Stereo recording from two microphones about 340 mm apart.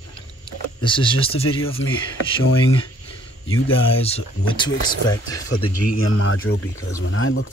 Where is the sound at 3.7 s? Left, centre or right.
Centre.